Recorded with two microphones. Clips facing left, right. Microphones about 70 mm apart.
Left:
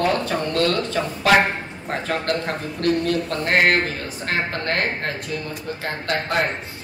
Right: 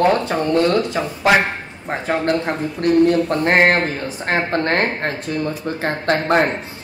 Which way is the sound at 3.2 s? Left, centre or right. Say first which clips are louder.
Right 4 dB; right.